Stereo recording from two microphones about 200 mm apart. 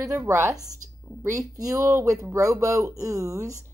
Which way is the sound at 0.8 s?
40° right (ahead or behind).